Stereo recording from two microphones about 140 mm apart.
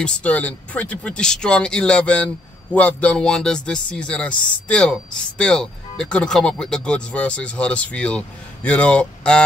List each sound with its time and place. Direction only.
0.0 s speech: 10° left (ahead or behind)